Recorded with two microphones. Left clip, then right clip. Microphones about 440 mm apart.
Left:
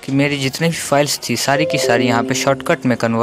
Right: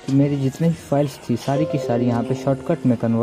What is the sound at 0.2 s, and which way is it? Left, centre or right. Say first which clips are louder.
Speech: left 7 dB; left.